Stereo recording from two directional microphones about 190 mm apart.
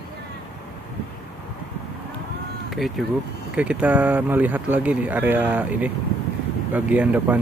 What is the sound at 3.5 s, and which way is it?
Speech, 5° right (ahead or behind).